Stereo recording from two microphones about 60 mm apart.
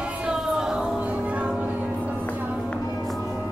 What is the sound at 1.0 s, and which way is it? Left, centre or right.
Music, right.